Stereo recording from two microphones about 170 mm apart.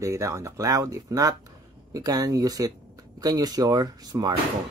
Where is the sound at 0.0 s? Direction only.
15° right (ahead or behind).